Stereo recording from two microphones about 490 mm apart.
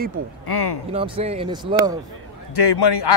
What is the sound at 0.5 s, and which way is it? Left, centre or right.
Speech, left.